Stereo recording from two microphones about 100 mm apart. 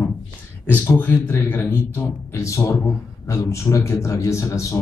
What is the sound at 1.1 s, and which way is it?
A man's voice, 25° left (ahead or behind).